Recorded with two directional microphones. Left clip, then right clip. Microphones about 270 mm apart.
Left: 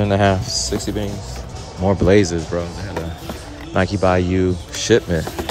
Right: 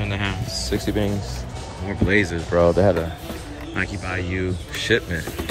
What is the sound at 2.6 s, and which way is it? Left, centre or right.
Speech, centre.